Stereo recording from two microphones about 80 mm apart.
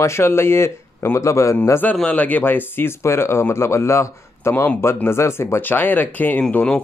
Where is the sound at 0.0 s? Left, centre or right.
Left.